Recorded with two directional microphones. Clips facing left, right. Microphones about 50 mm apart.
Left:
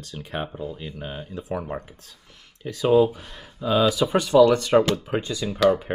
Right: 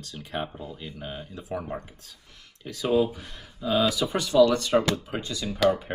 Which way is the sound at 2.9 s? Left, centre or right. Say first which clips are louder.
Left 5 dB; left.